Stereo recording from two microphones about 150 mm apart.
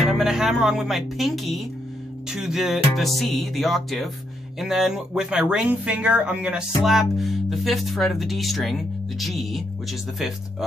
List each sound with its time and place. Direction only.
0.0 s speech: centre (ahead or behind)